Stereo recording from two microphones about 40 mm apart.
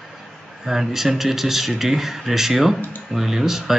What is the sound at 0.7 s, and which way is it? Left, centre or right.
Speech, centre.